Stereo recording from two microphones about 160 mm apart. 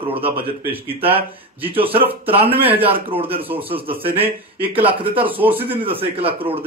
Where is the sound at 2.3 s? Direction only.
35° right (ahead or behind).